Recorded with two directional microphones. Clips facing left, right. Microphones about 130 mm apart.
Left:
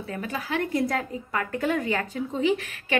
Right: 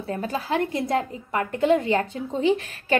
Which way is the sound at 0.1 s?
35° right (ahead or behind).